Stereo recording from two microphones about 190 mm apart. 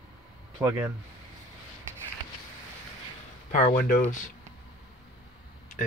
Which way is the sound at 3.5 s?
45° left (ahead or behind).